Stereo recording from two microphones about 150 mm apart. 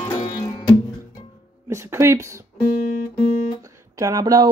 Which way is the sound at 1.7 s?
20° right (ahead or behind).